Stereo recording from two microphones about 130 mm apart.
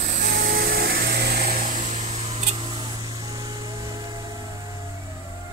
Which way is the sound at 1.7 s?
70° right (ahead or behind).